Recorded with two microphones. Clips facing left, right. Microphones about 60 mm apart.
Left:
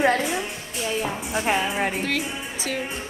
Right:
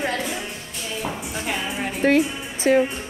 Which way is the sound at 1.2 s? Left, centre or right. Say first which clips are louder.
Left 4 dB; left.